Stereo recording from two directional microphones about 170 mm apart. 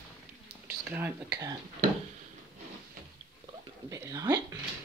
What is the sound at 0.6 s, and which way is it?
Speech, 10° right (ahead or behind).